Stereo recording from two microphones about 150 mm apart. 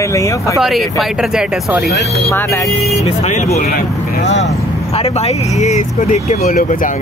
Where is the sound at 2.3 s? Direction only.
15° left (ahead or behind).